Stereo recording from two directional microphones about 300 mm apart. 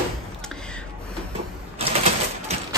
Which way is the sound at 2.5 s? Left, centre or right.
Right.